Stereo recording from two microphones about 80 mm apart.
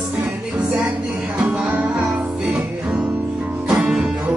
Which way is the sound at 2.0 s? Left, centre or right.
Centre.